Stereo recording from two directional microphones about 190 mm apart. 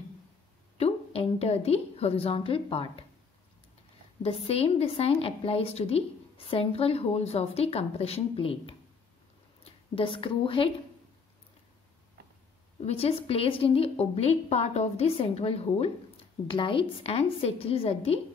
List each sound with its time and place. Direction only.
0.7 s a woman's voice: 30° left (ahead or behind)
4.2 s a woman's voice: 30° left (ahead or behind)
12.8 s a woman's voice: 30° left (ahead or behind)